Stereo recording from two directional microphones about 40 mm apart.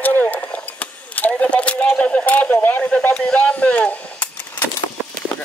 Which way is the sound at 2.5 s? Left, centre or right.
Left.